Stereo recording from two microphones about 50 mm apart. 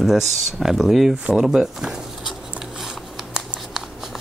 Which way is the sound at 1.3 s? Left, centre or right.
Centre.